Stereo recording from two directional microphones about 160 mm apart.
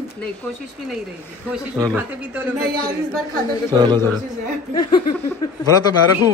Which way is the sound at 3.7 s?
25° right (ahead or behind).